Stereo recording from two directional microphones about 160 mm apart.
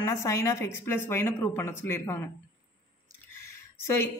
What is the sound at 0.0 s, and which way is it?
Speech, 20° left (ahead or behind).